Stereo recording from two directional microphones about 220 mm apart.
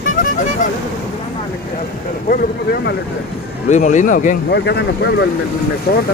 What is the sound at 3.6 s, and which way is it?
Speech, 35° left (ahead or behind).